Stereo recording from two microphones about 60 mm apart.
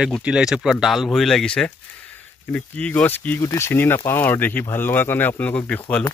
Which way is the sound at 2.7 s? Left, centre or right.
Left.